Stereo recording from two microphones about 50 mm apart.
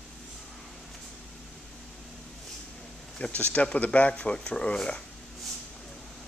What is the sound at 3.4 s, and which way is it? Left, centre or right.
Speech, left.